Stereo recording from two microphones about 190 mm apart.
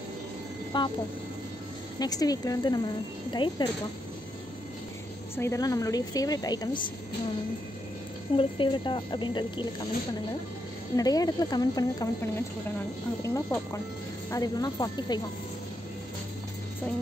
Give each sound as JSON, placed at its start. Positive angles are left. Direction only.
{"t": 0.7, "sound": "a woman's voice", "side_deg": 25}
{"t": 2.0, "sound": "a woman's voice", "side_deg": 20}
{"t": 5.3, "sound": "a woman's voice", "side_deg": 15}
{"t": 8.4, "sound": "a woman's voice", "side_deg": 25}
{"t": 11.0, "sound": "a woman's voice", "side_deg": 20}